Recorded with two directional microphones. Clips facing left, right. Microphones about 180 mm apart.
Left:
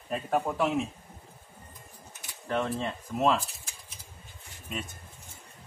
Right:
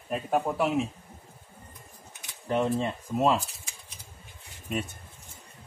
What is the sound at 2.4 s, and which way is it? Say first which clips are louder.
Speech: right 4 dB; 15° right (ahead or behind).